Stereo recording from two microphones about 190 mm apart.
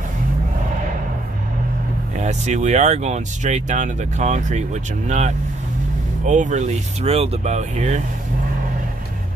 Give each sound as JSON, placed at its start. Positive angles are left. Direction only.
{"t": 2.1, "sound": "speech", "side_deg": -40}